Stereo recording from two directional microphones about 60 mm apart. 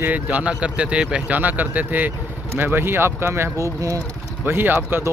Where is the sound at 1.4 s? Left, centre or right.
Right.